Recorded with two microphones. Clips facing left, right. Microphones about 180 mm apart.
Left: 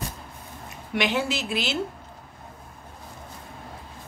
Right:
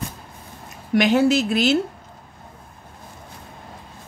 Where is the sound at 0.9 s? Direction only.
45° right (ahead or behind).